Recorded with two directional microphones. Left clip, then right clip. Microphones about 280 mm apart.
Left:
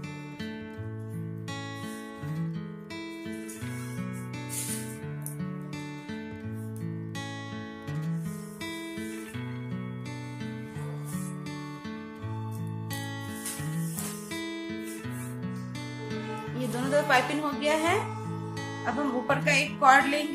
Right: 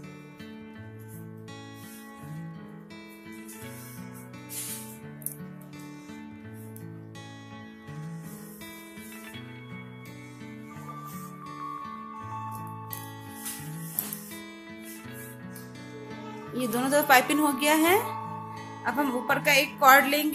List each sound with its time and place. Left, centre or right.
14.3 s music: centre
16.5 s a woman's voice: right